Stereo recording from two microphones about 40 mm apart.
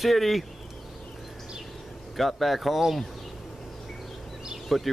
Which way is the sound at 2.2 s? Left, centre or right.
Centre.